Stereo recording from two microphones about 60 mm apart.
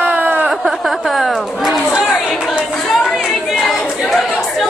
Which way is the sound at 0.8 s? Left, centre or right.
Centre.